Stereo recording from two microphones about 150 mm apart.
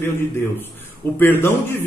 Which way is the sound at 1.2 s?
15° left (ahead or behind).